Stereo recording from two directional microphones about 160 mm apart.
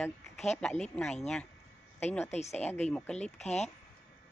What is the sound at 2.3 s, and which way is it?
Speech, 45° left (ahead or behind).